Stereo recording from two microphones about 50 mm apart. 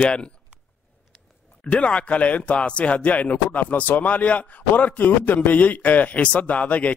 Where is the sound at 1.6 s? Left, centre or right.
Left.